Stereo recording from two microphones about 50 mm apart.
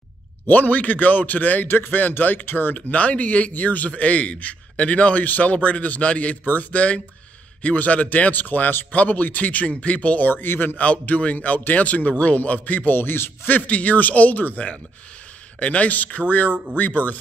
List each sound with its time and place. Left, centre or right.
0.5 s speech: left
10.3 s speech: left
10.8 s speech: left
13.6 s speech: left